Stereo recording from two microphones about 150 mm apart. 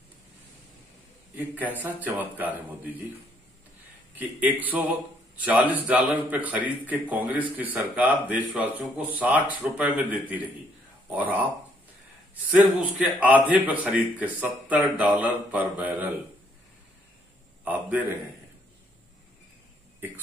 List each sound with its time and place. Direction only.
1.3 s a man's voice: 10° right (ahead or behind)
4.1 s a man's voice: 10° right (ahead or behind)
17.6 s a man's voice: 10° right (ahead or behind)